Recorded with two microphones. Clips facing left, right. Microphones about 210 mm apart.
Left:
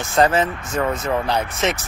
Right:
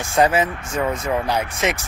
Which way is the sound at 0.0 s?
10° right (ahead or behind).